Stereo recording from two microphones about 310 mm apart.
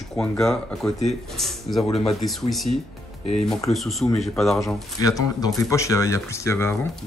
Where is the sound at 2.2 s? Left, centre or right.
Centre.